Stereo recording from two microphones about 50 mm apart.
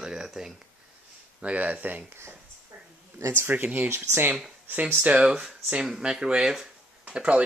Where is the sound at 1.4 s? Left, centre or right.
Right.